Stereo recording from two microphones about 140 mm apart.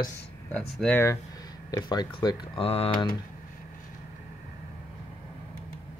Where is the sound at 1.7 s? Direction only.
30° left (ahead or behind).